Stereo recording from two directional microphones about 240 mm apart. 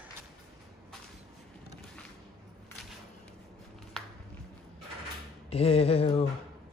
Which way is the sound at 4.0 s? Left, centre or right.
Centre.